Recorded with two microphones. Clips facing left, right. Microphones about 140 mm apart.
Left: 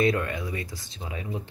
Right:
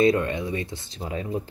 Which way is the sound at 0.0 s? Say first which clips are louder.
Right 4 dB; 25° right (ahead or behind).